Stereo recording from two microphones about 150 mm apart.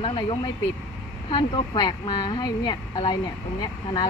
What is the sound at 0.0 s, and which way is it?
Speech, 35° left (ahead or behind).